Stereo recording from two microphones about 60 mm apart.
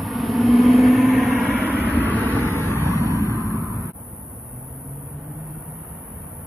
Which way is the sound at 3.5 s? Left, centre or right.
Right.